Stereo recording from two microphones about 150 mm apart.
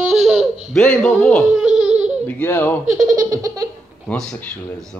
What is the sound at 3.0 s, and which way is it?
Speech, 20° right (ahead or behind).